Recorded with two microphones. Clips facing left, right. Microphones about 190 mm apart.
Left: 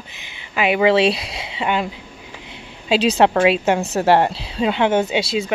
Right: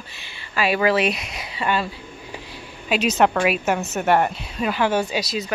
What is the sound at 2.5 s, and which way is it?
A woman's voice, 30° left (ahead or behind).